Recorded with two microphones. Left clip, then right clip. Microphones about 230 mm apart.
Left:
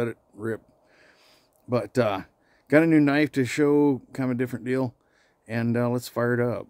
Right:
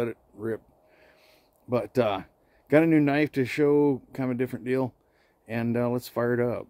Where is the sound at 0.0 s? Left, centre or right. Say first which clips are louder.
Left 1 dB; centre.